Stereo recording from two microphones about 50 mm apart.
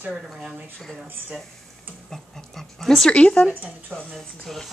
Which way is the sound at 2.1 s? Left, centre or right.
Centre.